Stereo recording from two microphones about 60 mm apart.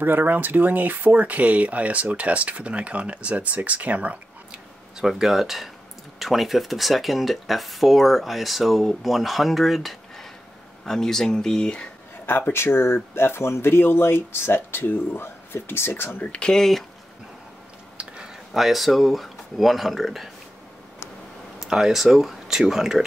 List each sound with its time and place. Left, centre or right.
0.0 s speech: right
5.0 s speech: centre
12.3 s speech: left
16.2 s speech: centre
17.9 s speech: centre
21.5 s speech: centre